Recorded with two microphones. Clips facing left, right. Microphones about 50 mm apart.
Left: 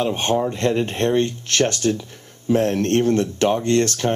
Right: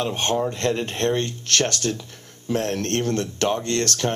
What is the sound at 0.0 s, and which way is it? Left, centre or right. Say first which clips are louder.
Speech: left 3 dB; left.